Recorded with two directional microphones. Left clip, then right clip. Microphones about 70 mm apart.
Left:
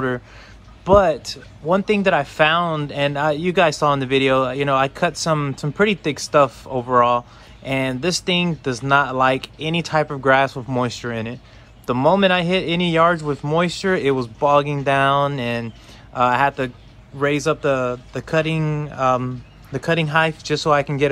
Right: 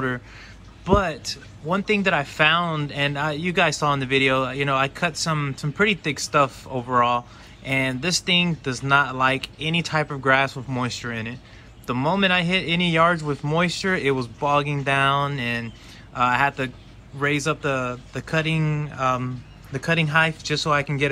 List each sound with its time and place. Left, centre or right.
0.8 s speech: left
5.7 s speech: left
19.8 s speech: left